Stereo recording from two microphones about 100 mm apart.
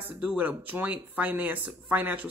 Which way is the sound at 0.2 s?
20° right (ahead or behind).